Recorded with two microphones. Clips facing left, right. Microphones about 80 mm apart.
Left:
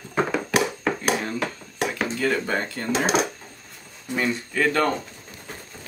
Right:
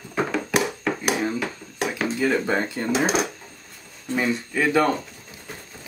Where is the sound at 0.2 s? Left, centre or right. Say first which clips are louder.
Left 1 dB; centre.